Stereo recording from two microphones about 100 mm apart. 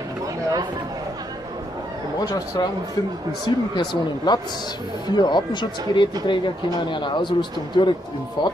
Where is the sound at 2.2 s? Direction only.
40° left (ahead or behind).